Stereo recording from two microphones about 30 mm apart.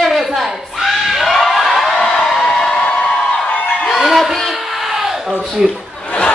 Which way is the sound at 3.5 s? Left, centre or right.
Left.